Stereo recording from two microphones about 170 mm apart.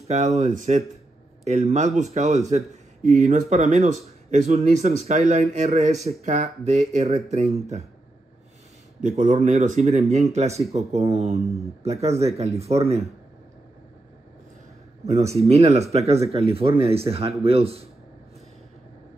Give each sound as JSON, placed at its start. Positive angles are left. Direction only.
{"t": 0.1, "sound": "speech", "side_deg": -40}
{"t": 9.0, "sound": "speech", "side_deg": -50}
{"t": 15.0, "sound": "speech", "side_deg": -40}